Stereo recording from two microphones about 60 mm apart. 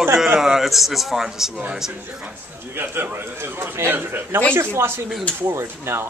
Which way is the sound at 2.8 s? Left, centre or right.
Right.